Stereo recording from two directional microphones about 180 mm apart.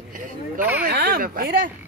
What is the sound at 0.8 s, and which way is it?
Speech, 60° right (ahead or behind).